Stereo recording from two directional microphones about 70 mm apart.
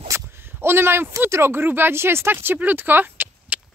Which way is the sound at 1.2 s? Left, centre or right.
Right.